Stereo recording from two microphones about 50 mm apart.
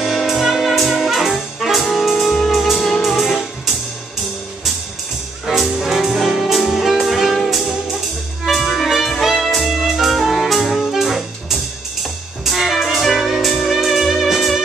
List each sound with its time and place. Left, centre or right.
0.0 s music: centre
5.6 s music: centre